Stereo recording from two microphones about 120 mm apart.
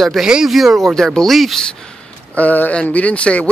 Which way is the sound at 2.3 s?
15° left (ahead or behind).